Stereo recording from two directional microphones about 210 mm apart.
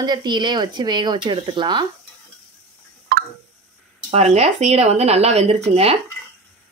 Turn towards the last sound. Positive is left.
turn(degrees=-30)  # may be behind; listen again after turning